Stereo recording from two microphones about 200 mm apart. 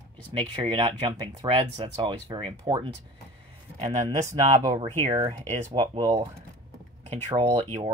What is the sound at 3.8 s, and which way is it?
Speech, 35° right (ahead or behind).